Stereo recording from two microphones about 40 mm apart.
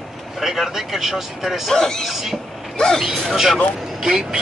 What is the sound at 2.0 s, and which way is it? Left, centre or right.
Speech, centre.